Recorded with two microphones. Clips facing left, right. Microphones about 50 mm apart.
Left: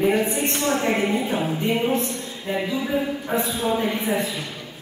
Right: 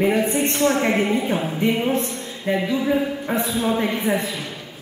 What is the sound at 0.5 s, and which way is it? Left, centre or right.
Speech, centre.